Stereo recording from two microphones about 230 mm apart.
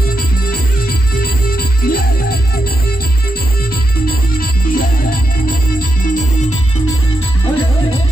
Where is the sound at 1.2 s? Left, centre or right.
Left.